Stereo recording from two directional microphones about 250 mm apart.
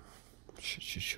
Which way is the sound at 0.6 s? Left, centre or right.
Right.